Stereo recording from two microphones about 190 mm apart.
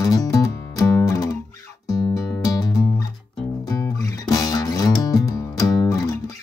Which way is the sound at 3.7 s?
15° left (ahead or behind).